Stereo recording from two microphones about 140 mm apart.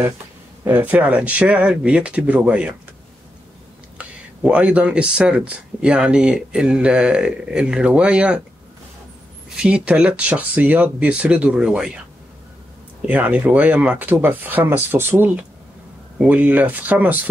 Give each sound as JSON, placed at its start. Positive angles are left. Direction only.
{"t": 0.7, "sound": "speech", "side_deg": -10}
{"t": 4.0, "sound": "speech", "side_deg": -10}
{"t": 9.6, "sound": "speech", "side_deg": -5}
{"t": 13.0, "sound": "speech", "side_deg": -10}